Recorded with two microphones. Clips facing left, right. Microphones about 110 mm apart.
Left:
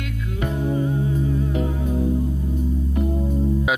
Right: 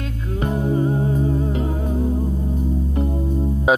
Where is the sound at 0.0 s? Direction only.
30° right (ahead or behind).